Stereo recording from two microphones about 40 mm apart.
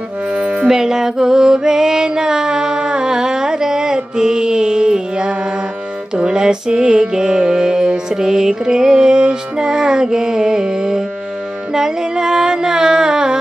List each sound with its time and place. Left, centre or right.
0.3 s music: right
0.7 s music: centre